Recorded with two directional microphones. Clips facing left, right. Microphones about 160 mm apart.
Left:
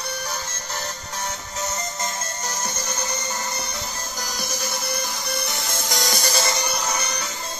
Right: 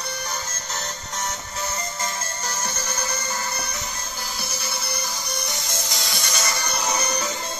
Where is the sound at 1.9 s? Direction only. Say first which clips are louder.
Left 1 dB; 20° left (ahead or behind).